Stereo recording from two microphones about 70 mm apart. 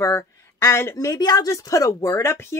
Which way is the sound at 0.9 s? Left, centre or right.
Left.